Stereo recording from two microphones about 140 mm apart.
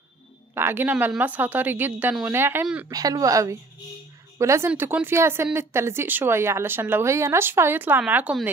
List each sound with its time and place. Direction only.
0.6 s speech: 15° right (ahead or behind)
2.9 s speech: 25° right (ahead or behind); by 8.5 s 10° right (ahead or behind)